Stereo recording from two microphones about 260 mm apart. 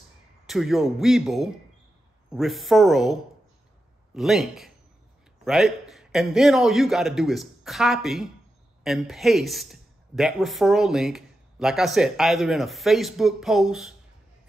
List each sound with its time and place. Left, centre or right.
0.5 s a man's voice: centre